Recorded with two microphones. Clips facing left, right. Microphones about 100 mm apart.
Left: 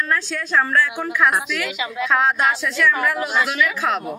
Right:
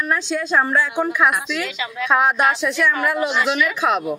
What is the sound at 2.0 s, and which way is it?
A woman's voice, 15° right (ahead or behind).